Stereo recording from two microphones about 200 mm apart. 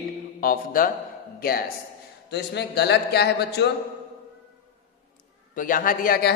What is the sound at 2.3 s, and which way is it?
A man's voice, 55° left (ahead or behind).